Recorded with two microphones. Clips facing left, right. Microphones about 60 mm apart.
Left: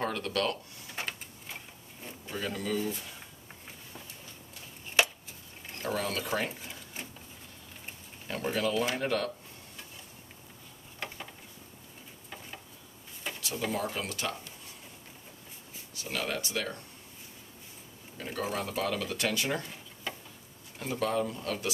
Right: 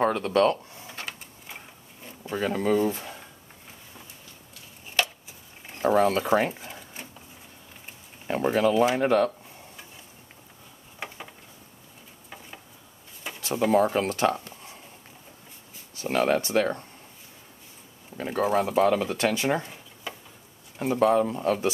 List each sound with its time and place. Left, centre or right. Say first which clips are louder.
0.0 s speech: right 9 dB; right
2.3 s speech: right 9 dB; right
5.0 s a sound: even; centre
5.8 s speech: right 11 dB; right
8.3 s speech: right 8 dB; right
11.0 s a sound: right 2 dB; centre
13.2 s a sound: right 1 dB; centre
13.8 s speech: right 11 dB; right
16.0 s speech: right 11 dB; right
18.1 s speech: right 10 dB; right
20.1 s a sound: right 1 dB; centre
20.8 s speech: right 9 dB; right